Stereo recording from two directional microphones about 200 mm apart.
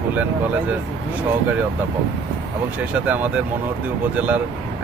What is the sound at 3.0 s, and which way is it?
Speech, 10° right (ahead or behind).